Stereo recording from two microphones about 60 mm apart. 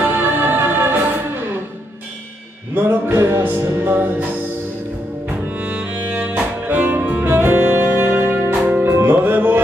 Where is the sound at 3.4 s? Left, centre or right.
Right.